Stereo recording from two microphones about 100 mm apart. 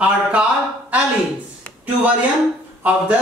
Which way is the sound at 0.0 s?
10° right (ahead or behind).